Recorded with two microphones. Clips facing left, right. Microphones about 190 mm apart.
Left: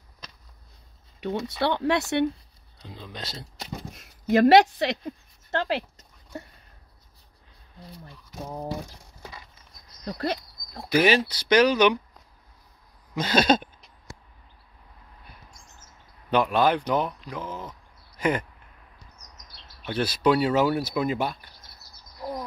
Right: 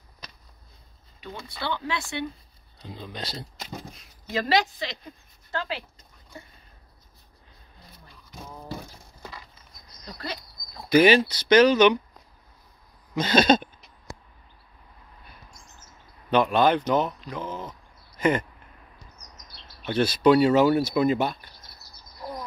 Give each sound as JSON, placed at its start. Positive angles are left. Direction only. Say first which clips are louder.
{"t": 1.2, "sound": "speech", "louder": "left 8 dB", "side_deg": 65}
{"t": 3.1, "sound": "speech", "louder": "right 2 dB", "side_deg": 0}
{"t": 3.9, "sound": "speech", "louder": "left 10 dB", "side_deg": 65}
{"t": 10.0, "sound": "a sound", "louder": "left 8 dB", "side_deg": 55}
{"t": 10.9, "sound": "speech", "louder": "right 4 dB", "side_deg": 5}
{"t": 13.1, "sound": "speech", "louder": "right 2 dB", "side_deg": 5}
{"t": 16.3, "sound": "speech", "louder": "right 1 dB", "side_deg": 5}
{"t": 19.8, "sound": "speech", "louder": "right 3 dB", "side_deg": 5}